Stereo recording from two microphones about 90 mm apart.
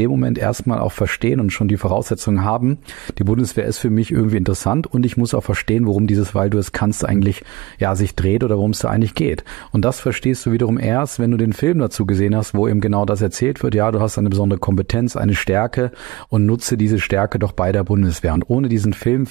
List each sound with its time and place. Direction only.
0.1 s speech: 50° left (ahead or behind)